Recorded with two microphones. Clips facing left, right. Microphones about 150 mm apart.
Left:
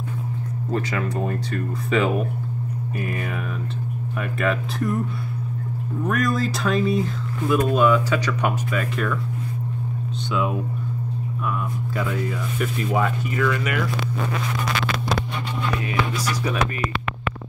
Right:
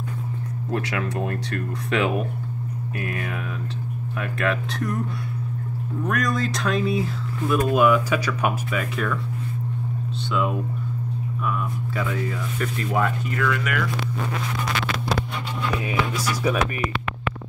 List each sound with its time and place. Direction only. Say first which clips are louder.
0.7 s speech: left 1 dB; centre (ahead or behind)
6.0 s speech: left 2 dB; centre (ahead or behind)
12.0 s speech: left 1 dB; 5° left (ahead or behind)